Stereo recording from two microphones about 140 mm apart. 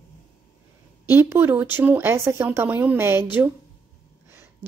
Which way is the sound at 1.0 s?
15° right (ahead or behind).